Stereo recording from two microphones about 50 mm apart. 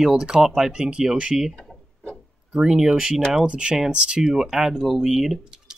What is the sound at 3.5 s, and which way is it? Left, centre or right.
Speech, right.